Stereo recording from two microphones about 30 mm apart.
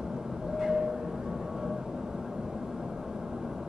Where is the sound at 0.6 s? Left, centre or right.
Centre.